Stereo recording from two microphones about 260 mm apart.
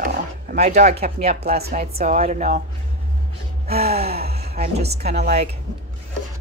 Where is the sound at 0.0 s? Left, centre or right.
Right.